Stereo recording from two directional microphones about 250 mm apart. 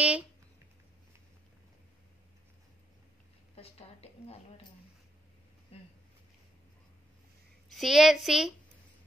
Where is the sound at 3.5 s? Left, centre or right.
Left.